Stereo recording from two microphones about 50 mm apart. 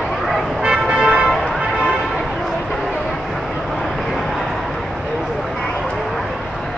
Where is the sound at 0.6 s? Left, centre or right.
Centre.